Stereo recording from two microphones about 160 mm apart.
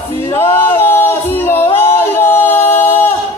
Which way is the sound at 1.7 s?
15° left (ahead or behind).